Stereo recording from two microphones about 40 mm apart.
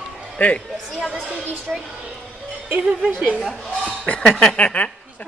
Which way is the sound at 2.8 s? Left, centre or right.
Centre.